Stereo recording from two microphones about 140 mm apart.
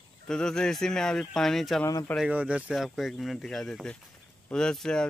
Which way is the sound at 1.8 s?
20° left (ahead or behind).